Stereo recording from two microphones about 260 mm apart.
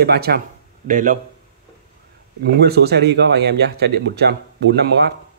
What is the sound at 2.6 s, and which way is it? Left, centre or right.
Speech, right.